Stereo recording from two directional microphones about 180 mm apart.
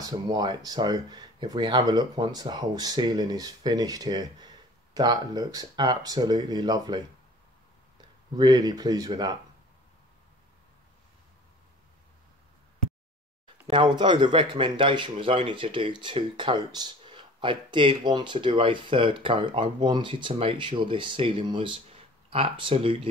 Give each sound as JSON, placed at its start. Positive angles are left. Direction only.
{"t": 0.0, "sound": "a man's voice", "side_deg": -20}
{"t": 8.4, "sound": "a man's voice", "side_deg": -20}
{"t": 13.7, "sound": "a man's voice", "side_deg": -25}